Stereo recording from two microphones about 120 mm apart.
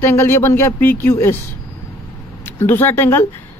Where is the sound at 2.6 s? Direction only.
20° left (ahead or behind).